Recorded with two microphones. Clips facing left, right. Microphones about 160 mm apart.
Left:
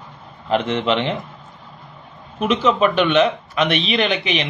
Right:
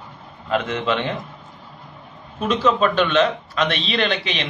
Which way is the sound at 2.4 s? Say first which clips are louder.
Left 2 dB; 15° left (ahead or behind).